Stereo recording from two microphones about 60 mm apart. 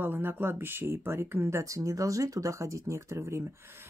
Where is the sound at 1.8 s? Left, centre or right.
Right.